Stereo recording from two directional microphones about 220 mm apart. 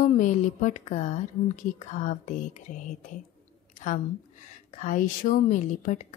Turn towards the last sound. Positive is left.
turn(degrees=35)  # may be behind; listen again after turning